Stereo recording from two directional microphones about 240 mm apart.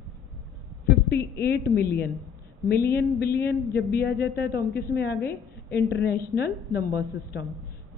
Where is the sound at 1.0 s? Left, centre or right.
Left.